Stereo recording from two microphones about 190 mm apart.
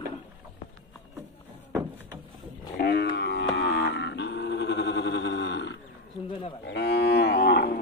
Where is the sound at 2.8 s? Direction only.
60° left (ahead or behind).